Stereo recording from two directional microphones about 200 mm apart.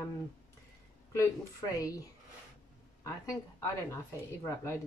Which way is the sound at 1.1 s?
15° left (ahead or behind).